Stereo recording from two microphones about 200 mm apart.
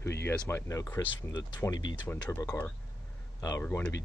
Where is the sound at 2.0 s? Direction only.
10° left (ahead or behind).